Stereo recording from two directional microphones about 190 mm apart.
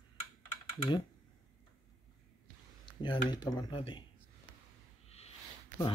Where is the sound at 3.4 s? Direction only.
20° left (ahead or behind).